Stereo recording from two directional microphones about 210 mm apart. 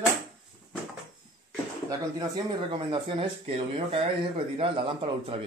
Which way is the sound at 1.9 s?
20° right (ahead or behind).